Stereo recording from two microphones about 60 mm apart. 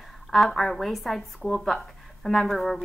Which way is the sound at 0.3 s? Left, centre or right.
Centre.